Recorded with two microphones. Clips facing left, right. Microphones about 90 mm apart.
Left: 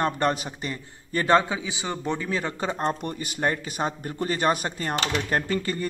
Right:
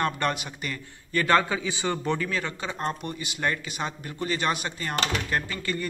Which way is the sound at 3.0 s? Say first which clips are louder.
Left 3 dB; 45° left (ahead or behind).